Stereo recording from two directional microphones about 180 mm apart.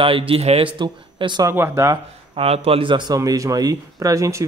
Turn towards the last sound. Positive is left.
turn(degrees=-15)  # may be behind; listen again after turning